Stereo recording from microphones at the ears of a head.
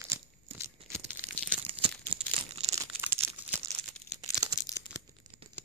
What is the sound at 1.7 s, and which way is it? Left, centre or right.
Crumpling, right.